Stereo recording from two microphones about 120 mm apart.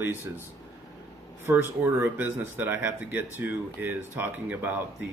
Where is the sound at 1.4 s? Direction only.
20° right (ahead or behind).